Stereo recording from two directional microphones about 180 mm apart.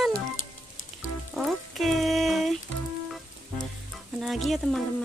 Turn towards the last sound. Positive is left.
turn(degrees=0)  # may be behind; listen again after turning